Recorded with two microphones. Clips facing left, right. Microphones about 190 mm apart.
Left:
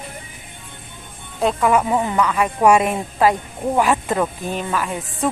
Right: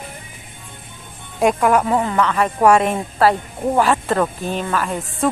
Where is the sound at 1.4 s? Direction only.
5° right (ahead or behind).